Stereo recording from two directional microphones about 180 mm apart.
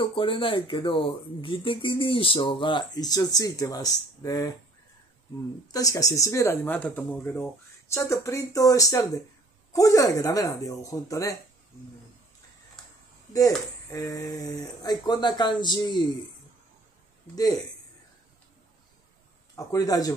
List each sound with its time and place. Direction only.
0.0 s speech: 30° left (ahead or behind)
5.7 s speech: 20° left (ahead or behind)
13.8 s speech: 15° left (ahead or behind)
19.5 s speech: 20° left (ahead or behind)